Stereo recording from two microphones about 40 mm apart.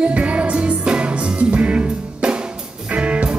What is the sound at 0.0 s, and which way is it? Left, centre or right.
Music, right.